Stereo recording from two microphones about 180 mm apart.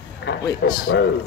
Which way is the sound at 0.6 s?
70° left (ahead or behind).